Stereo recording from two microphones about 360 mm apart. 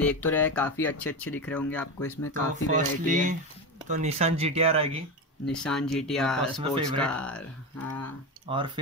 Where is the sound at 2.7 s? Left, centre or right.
Right.